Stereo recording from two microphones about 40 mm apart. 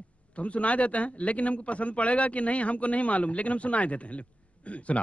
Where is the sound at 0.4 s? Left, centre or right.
Left.